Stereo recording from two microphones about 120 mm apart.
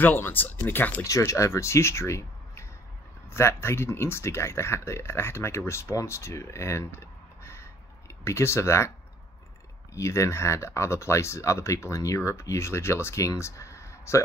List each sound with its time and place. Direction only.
0.0 s speech: 15° left (ahead or behind)
1.0 s speech: 25° left (ahead or behind)
9.9 s speech: 25° left (ahead or behind)